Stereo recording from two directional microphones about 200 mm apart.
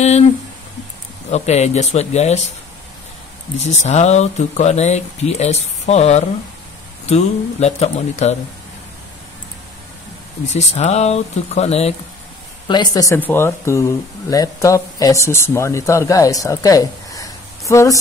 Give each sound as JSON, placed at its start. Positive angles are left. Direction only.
{"t": 1.3, "sound": "speech", "side_deg": 35}
{"t": 3.5, "sound": "speech", "side_deg": 35}
{"t": 10.5, "sound": "speech", "side_deg": 35}
{"t": 12.6, "sound": "a woman's voice", "side_deg": 20}